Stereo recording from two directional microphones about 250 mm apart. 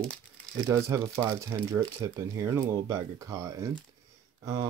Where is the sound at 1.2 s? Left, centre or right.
Centre.